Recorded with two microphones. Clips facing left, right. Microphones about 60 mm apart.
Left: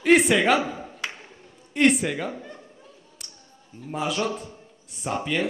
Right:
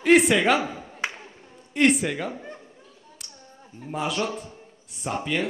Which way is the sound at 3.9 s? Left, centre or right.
Centre.